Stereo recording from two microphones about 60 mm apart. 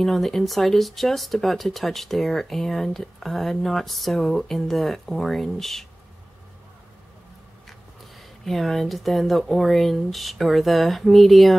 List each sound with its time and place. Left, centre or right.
0.0 s speech: centre
8.5 s speech: centre